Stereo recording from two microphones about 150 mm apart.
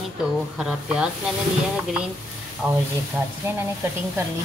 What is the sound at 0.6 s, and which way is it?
Speech, 5° right (ahead or behind).